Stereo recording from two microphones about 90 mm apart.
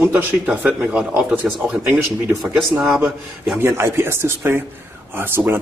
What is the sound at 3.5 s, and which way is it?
Speech, 30° right (ahead or behind).